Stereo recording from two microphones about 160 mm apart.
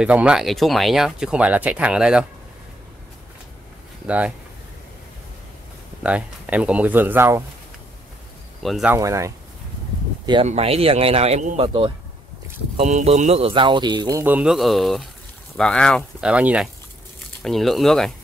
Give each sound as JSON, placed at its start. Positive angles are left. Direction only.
{"t": 0.0, "sound": "speech", "side_deg": -5}
{"t": 6.0, "sound": "speech", "side_deg": -10}
{"t": 8.6, "sound": "speech", "side_deg": 0}
{"t": 8.9, "sound": "speech", "side_deg": -20}
{"t": 10.4, "sound": "speech", "side_deg": -40}
{"t": 14.2, "sound": "speech", "side_deg": -10}
{"t": 16.2, "sound": "speech", "side_deg": -5}